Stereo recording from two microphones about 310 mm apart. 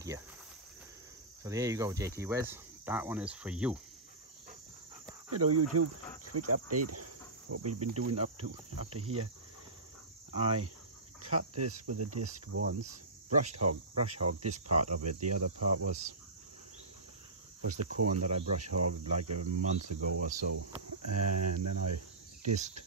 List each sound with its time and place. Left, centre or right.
1.4 s cricket: centre
5.3 s cricket: right
8.5 s speech: right
10.3 s cricket: centre
11.5 s speech: right
17.6 s speech: right
18.1 s speech: right
18.6 s speech: right
21.2 s cricket: right